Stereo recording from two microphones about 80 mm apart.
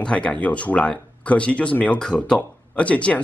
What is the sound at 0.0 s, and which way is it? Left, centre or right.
Speech, centre.